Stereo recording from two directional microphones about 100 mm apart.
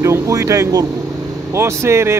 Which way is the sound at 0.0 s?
30° right (ahead or behind).